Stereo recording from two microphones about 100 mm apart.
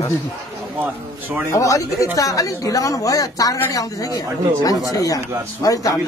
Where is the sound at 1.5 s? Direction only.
35° left (ahead or behind).